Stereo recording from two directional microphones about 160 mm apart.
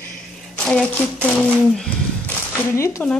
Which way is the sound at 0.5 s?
5° left (ahead or behind).